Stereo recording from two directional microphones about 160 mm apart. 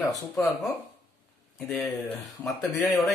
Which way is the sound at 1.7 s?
Centre (ahead or behind).